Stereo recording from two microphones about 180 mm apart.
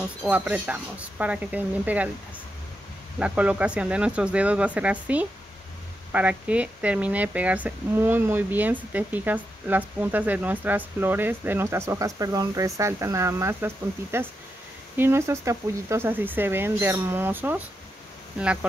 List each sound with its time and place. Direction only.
0.2 s speech: 10° right (ahead or behind)
3.2 s speech: 5° right (ahead or behind)